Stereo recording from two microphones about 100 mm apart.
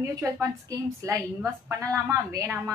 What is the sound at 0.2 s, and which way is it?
A woman's voice, 30° right (ahead or behind).